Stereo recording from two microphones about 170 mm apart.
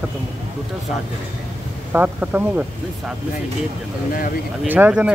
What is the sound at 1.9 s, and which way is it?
Speech, 10° right (ahead or behind).